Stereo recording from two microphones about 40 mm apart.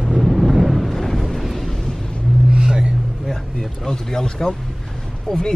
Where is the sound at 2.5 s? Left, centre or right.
Centre.